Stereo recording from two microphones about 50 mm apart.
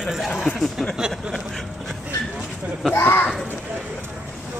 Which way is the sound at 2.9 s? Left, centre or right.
Left.